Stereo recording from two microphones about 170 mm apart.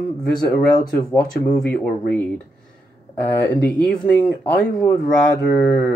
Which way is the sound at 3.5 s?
10° left (ahead or behind).